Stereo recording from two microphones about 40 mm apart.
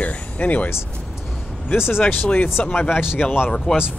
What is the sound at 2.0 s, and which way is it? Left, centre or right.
Speech, left.